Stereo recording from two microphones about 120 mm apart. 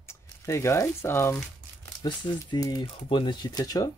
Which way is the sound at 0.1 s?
25° left (ahead or behind).